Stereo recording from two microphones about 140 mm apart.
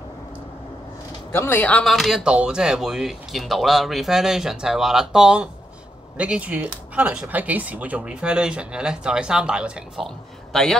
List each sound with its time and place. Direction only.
1.3 s speech: 15° left (ahead or behind)